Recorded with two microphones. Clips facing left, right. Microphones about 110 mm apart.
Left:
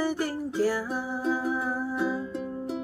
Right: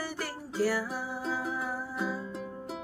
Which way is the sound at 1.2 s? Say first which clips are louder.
Left 7 dB; centre (ahead or behind).